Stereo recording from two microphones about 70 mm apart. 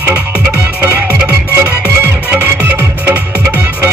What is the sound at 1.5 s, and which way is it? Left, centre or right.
Music, right.